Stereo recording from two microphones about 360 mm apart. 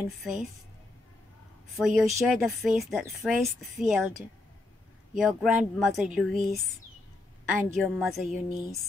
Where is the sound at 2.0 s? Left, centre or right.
Centre.